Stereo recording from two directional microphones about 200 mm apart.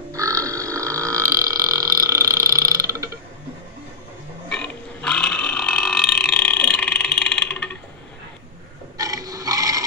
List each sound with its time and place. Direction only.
0.1 s burping: 15° right (ahead or behind)
4.5 s burping: 5° left (ahead or behind)
8.9 s a sound: 15° right (ahead or behind)